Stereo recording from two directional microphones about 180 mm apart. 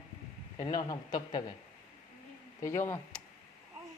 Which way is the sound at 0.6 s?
20° left (ahead or behind).